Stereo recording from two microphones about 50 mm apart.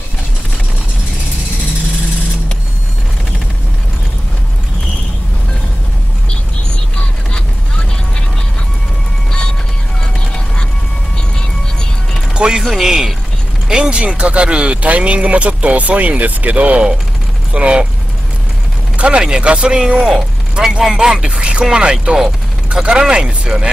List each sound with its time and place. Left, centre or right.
12.4 s speech: centre
12.6 s speech: centre; by 17.8 s right
18.9 s speech: centre